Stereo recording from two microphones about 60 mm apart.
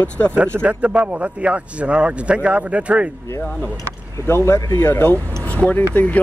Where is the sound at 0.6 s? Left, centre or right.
Right.